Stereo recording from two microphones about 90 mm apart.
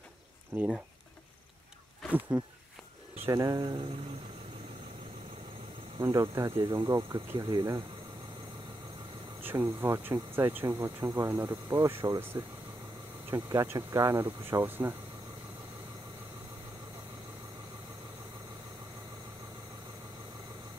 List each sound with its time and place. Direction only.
0.5 s speech: 20° right (ahead or behind)
2.0 s speech: 20° right (ahead or behind)
3.3 s speech: 40° right (ahead or behind)
5.9 s speech: 35° right (ahead or behind)
9.4 s speech: 25° right (ahead or behind)
13.3 s speech: 40° right (ahead or behind)
14.2 s speech: 25° right (ahead or behind)